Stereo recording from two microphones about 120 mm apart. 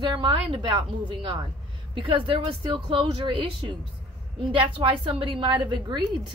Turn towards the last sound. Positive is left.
turn(degrees=-40)  # may be behind; listen again after turning